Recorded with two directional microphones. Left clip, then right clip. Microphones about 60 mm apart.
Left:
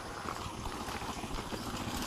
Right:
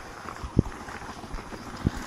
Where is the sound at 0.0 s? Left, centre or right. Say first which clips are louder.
Right 1 dB; centre.